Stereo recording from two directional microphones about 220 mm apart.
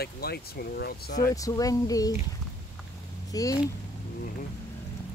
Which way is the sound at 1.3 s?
15° left (ahead or behind).